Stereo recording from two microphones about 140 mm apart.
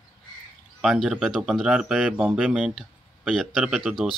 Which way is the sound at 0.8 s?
Centre (ahead or behind).